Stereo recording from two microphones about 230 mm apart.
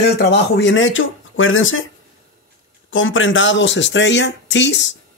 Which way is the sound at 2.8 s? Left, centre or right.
Left.